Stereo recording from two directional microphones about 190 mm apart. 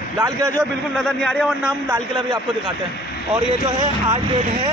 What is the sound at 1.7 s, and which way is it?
Speech, 15° right (ahead or behind).